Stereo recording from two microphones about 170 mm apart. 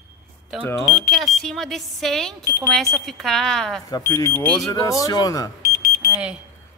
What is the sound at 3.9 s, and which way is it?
Speech, 20° left (ahead or behind).